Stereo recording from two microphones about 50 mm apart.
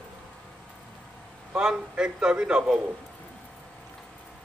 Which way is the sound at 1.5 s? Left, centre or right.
Centre.